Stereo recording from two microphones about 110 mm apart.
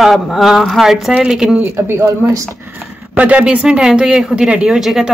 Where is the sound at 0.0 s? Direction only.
Centre (ahead or behind).